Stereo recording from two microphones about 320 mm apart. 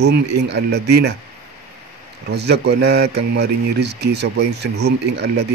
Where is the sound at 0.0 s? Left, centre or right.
Right.